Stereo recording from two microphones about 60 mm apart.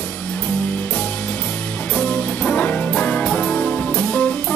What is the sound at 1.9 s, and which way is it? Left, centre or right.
Music, centre.